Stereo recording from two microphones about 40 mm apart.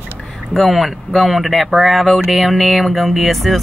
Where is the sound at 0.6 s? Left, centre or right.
Centre.